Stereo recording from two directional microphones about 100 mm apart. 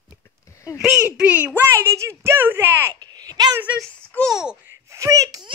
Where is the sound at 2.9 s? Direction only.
40° right (ahead or behind).